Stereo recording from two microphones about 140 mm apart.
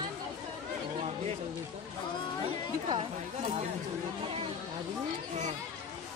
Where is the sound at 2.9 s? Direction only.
40° right (ahead or behind).